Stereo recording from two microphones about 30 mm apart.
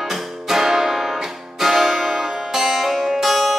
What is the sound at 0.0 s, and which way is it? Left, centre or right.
Music, centre.